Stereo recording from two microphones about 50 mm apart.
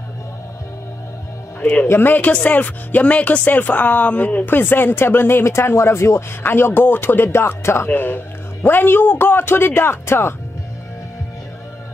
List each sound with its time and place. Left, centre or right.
1.9 s speech: left
2.1 s speech: left
5.4 s speech: left
6.4 s speech: left
7.9 s speech: left